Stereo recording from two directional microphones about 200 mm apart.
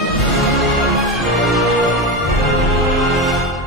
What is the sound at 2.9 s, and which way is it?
Music, centre (ahead or behind).